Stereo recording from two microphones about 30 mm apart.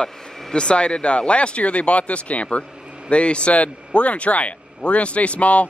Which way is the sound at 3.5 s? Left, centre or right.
Left.